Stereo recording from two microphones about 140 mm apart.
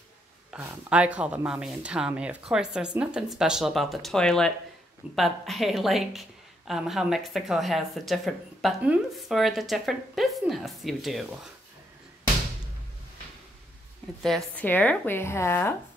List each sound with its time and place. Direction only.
0.6 s speech: 10° right (ahead or behind)
14.2 s speech: 5° left (ahead or behind)